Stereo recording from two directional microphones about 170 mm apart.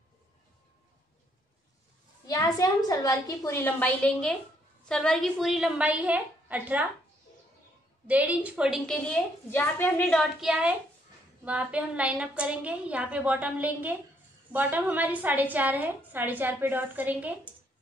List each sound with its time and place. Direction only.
2.2 s a woman's voice: 20° left (ahead or behind); by 6.9 s 10° right (ahead or behind)
8.1 s a woman's voice: 10° right (ahead or behind)